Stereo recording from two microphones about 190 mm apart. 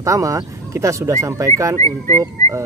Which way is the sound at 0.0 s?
15° right (ahead or behind).